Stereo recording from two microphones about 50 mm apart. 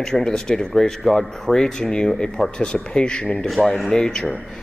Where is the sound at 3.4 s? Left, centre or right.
Centre.